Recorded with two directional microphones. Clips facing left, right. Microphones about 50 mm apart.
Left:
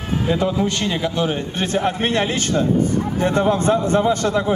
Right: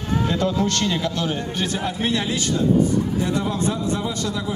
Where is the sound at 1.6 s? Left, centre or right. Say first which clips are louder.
Left 6 dB; left.